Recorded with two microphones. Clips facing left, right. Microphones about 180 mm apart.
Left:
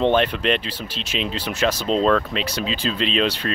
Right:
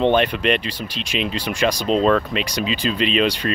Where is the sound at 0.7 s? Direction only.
5° left (ahead or behind).